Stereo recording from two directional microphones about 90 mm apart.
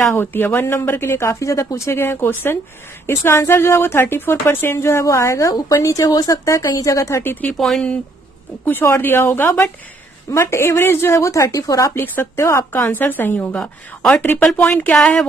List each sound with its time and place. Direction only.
0.1 s a woman's voice: 25° left (ahead or behind)
5.5 s a woman's voice: 50° left (ahead or behind)
7.5 s speech: 5° left (ahead or behind)
8.6 s a woman's voice: 25° left (ahead or behind)